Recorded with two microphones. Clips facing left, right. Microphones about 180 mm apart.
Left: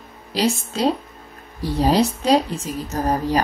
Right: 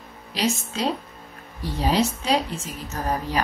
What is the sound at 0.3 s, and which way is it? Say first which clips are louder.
Speech: left 4 dB; 35° left (ahead or behind).